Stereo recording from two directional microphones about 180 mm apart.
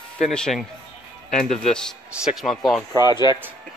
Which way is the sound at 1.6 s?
5° left (ahead or behind).